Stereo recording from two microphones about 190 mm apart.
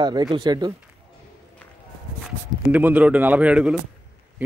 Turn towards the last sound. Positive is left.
turn(degrees=-5)  # may be behind; listen again after turning